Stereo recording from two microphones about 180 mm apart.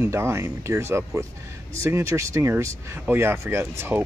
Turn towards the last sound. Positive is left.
turn(degrees=-10)  # may be behind; listen again after turning